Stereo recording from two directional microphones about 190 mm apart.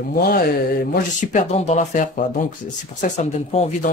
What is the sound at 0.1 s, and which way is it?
Speech, 50° left (ahead or behind).